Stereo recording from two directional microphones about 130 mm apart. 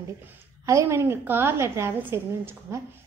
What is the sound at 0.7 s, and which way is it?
A woman's voice, 20° right (ahead or behind).